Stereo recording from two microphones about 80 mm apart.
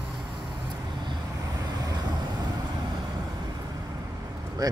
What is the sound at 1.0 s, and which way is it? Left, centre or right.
Vehicle, right.